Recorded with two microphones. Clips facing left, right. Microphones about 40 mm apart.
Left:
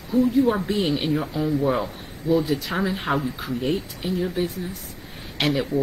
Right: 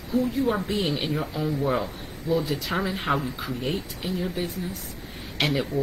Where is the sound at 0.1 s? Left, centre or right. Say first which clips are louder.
Left 5 dB; centre.